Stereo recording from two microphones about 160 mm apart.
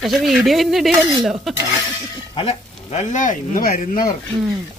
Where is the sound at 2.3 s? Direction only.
40° left (ahead or behind); by 4.1 s 65° left (ahead or behind).